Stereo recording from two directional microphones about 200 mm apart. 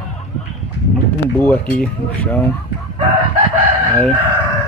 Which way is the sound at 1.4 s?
10° left (ahead or behind).